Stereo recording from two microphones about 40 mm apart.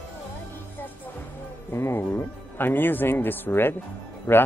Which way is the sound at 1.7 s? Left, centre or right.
Left.